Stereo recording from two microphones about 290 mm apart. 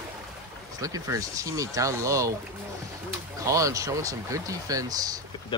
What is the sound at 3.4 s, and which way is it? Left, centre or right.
Speech, centre.